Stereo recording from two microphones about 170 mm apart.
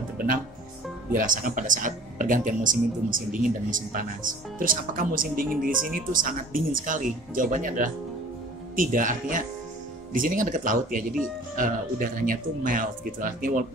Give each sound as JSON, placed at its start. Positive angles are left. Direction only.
{"t": 1.1, "sound": "speech", "side_deg": -55}